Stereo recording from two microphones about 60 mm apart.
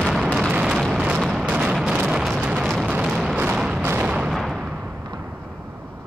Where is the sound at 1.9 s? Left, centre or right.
Centre.